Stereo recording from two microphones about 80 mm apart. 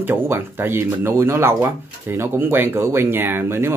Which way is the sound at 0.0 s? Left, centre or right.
Right.